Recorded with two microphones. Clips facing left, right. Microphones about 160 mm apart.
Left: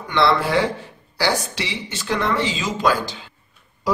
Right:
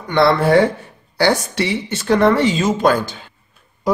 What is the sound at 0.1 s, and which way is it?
Speech, 50° right (ahead or behind).